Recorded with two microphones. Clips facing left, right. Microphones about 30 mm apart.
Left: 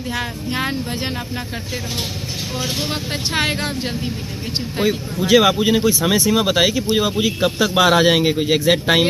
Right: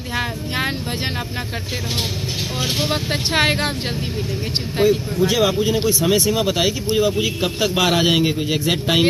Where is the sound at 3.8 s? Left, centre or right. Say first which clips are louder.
Even; centre.